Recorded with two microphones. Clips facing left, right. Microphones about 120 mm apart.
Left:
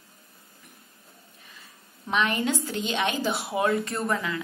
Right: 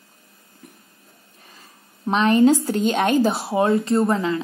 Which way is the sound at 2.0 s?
35° right (ahead or behind).